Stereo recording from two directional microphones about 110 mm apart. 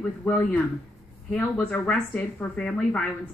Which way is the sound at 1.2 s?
10° left (ahead or behind).